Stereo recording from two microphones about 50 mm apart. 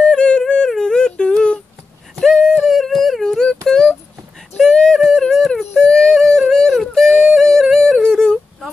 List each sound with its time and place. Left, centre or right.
0.0 s yodeling: centre
0.7 s a sound: centre
7.7 s yodeling: centre